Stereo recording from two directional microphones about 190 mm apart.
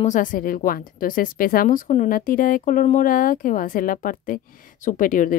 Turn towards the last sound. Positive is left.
turn(degrees=45)  # may be behind; listen again after turning